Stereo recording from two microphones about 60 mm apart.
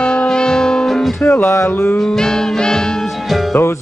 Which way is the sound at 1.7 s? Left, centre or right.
Left.